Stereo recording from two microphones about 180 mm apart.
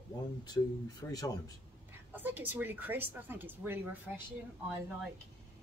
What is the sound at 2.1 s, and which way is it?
Speech, 10° right (ahead or behind).